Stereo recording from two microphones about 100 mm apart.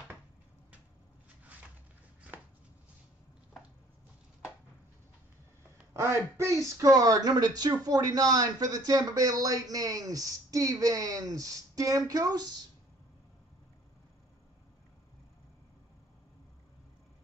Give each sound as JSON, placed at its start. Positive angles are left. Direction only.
{"t": 5.9, "sound": "speech", "side_deg": -30}